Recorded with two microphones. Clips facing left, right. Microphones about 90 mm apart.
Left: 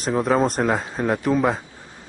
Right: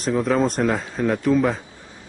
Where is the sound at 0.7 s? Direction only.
35° left (ahead or behind).